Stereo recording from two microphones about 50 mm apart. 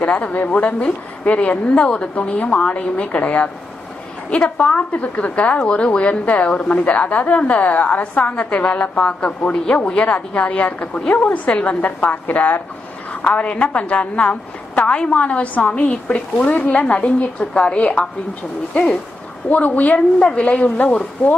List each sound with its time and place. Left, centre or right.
0.0 s a woman's voice: left
13.2 s a woman's voice: left
19.5 s a woman's voice: left
20.2 s a woman's voice: left